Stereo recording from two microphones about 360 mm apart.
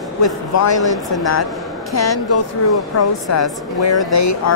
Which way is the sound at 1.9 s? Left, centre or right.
Left.